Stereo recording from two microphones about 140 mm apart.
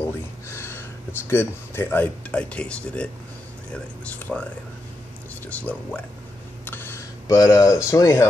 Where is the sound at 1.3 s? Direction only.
15° left (ahead or behind).